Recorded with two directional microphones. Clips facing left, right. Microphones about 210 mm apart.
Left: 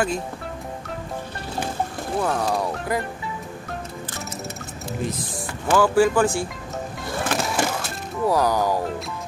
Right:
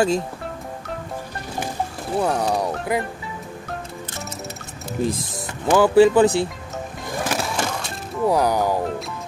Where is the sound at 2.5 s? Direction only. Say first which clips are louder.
Right 2 dB; 15° right (ahead or behind).